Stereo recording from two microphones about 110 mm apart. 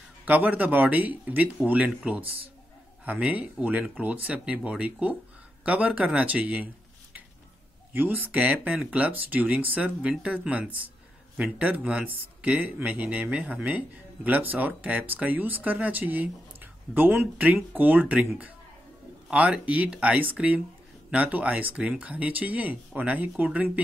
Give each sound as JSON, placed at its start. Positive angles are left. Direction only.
{"t": 0.2, "sound": "a man's voice", "side_deg": -15}
{"t": 2.2, "sound": "a man's voice", "side_deg": -55}
{"t": 3.1, "sound": "a man's voice", "side_deg": -15}
{"t": 7.9, "sound": "a man's voice", "side_deg": -15}